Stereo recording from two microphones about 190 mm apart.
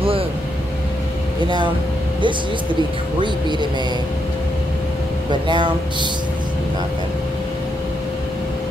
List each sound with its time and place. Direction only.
2.2 s speech: 25° right (ahead or behind)
5.3 s speech: 25° right (ahead or behind)